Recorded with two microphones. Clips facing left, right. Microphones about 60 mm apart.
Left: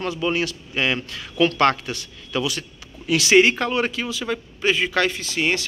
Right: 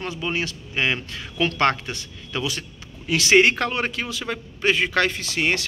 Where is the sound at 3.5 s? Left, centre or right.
Right.